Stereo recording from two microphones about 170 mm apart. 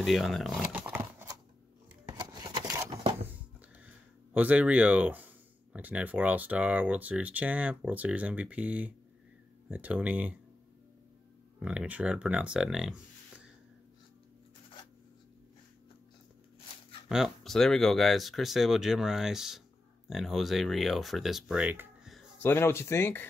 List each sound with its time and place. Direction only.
0.0 s speech: centre (ahead or behind)
2.1 s a sound: 25° right (ahead or behind)
4.3 s speech: 10° right (ahead or behind)
11.6 s speech: 5° right (ahead or behind)
17.1 s speech: centre (ahead or behind)
22.4 s speech: 15° left (ahead or behind)